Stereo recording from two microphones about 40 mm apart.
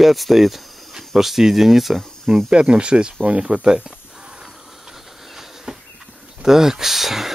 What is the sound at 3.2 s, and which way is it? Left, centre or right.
Speech, right.